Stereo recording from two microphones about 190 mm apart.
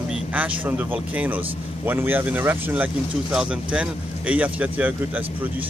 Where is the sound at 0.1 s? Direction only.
10° right (ahead or behind).